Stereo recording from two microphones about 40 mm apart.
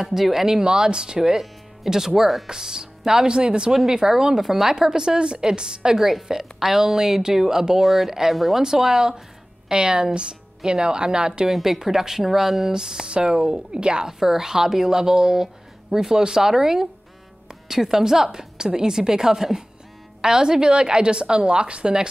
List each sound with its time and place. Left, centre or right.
0.0 s a woman's voice: centre
1.3 s music: centre
1.9 s a woman's voice: centre
6.2 s a woman's voice: centre
8.6 s a woman's voice: centre
11.5 s a woman's voice: centre; by 14.1 s right
14.2 s a woman's voice: centre